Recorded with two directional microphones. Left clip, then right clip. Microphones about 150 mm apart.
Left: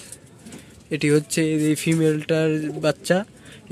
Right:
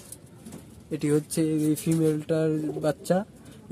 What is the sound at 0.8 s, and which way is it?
Speech, 10° left (ahead or behind).